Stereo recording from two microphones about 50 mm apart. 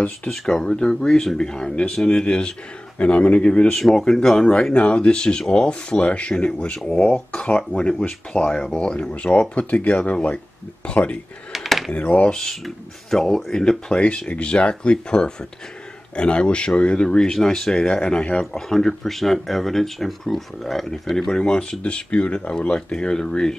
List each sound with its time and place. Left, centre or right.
0.3 s speech: centre
3.7 s speech: centre
4.7 s speech: left
11.5 s a sound: centre
11.9 s speech: left
12.4 s speech: centre
18.4 s speech: centre